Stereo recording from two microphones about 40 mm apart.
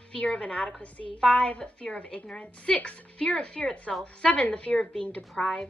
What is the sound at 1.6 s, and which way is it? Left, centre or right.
A woman's voice, left.